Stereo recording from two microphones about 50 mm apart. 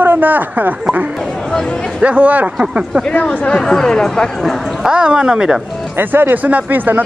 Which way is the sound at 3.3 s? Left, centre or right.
Left.